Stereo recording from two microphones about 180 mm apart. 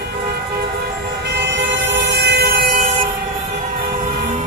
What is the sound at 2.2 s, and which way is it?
Vehicle, 65° right (ahead or behind).